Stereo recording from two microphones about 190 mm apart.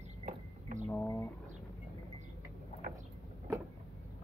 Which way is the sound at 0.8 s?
10° left (ahead or behind).